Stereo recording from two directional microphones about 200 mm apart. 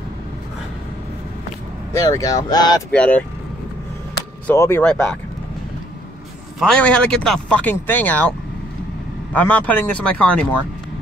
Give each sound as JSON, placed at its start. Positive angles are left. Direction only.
{"t": 2.0, "sound": "speech", "side_deg": 15}
{"t": 2.9, "sound": "speech", "side_deg": 5}
{"t": 4.5, "sound": "speech", "side_deg": 10}
{"t": 6.6, "sound": "speech", "side_deg": 5}